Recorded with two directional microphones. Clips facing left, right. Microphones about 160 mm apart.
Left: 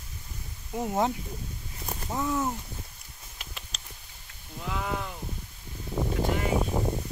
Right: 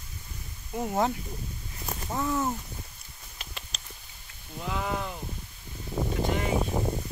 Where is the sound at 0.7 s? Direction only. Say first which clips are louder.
Even; 5° left (ahead or behind).